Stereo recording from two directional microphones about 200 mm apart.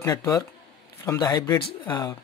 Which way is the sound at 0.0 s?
15° left (ahead or behind).